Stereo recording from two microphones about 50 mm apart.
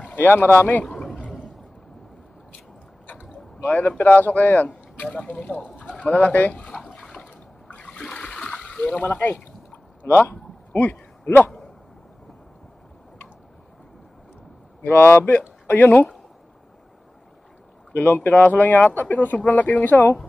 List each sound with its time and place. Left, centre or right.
0.1 s speech: left
0.8 s a sound: centre
3.1 s boat: left
4.0 s speech: left
6.7 s a sound: centre
7.7 s water: left
8.0 s water: centre
8.8 s speech: left
14.8 s speech: left
17.9 s speech: left